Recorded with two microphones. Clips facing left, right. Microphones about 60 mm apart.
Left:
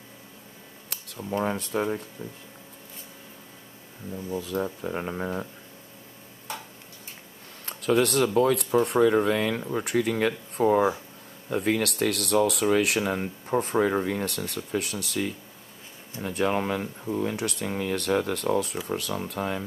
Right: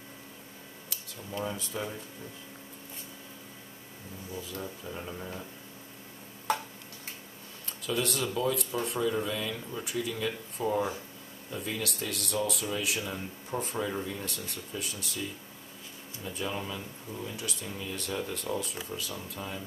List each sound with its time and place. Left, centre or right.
1.4 s speech: left
4.3 s speech: left
7.6 s speech: left